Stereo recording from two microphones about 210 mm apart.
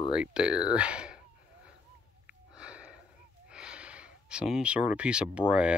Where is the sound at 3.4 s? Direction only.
5° right (ahead or behind).